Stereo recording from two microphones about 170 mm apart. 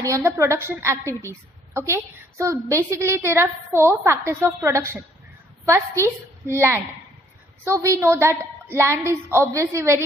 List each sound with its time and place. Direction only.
0.0 s a woman's voice: 15° right (ahead or behind)
6.5 s a woman's voice: 15° right (ahead or behind)